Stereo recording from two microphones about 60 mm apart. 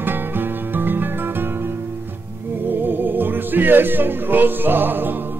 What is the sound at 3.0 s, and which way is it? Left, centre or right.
Music, right.